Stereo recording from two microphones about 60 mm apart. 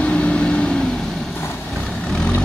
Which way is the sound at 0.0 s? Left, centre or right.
Left.